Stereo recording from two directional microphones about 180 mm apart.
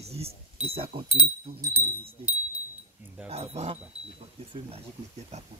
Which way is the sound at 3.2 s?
35° right (ahead or behind).